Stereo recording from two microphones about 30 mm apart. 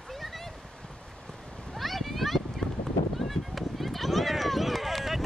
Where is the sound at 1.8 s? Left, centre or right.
Centre.